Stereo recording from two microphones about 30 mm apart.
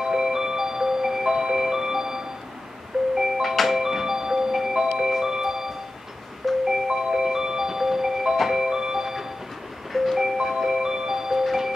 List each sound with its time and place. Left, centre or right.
0.0 s music: centre
3.4 s music: centre
3.8 s music: centre
4.6 s glockenspiel: centre
5.2 s music: centre
6.4 s music: centre
6.9 s music: centre